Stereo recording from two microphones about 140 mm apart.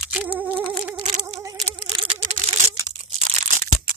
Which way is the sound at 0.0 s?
10° right (ahead or behind).